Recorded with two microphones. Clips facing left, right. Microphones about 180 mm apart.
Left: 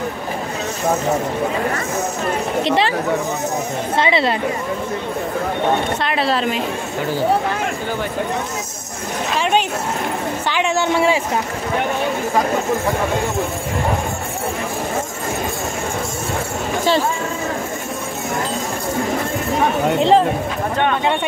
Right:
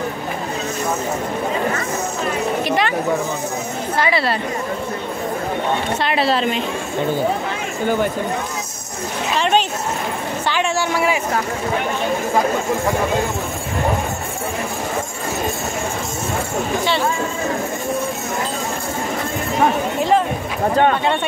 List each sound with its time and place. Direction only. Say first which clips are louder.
2.6 s a woman's voice: left 4 dB; 25° left (ahead or behind)
4.0 s a woman's voice: left 2 dB; 20° left (ahead or behind)
6.0 s a woman's voice: right 4 dB; centre (ahead or behind)
9.4 s a woman's voice: right 1 dB; 10° left (ahead or behind)
20.0 s a woman's voice: left 3 dB; 30° left (ahead or behind)